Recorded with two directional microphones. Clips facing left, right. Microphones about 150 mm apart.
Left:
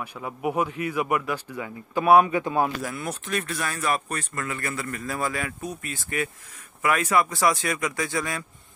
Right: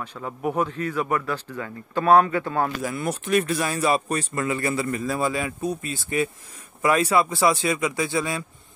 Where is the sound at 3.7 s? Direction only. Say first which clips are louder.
Right 4 dB; 25° right (ahead or behind).